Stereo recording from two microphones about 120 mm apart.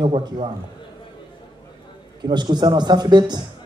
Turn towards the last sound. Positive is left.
turn(degrees=-35)  # may be behind; listen again after turning